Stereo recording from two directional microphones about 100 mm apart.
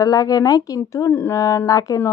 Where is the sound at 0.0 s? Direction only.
40° left (ahead or behind).